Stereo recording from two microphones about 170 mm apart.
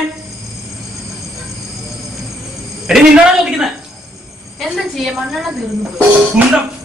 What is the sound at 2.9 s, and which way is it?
Speech, 5° right (ahead or behind).